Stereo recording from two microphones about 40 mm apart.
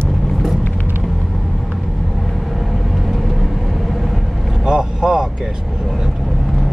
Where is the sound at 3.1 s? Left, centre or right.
Centre.